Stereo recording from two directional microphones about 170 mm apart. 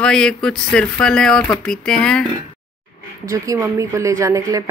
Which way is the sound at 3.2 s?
20° right (ahead or behind).